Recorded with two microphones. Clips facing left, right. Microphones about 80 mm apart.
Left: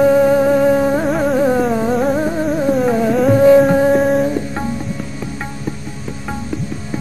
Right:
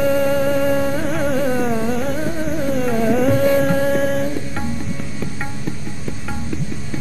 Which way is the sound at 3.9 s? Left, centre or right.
Centre.